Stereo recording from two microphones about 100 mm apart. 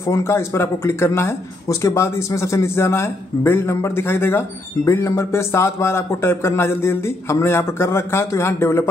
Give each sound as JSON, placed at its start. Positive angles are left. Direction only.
{"t": 0.0, "sound": "speech", "side_deg": 30}